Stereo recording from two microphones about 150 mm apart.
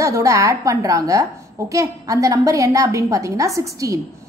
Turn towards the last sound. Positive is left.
turn(degrees=-20)  # may be behind; listen again after turning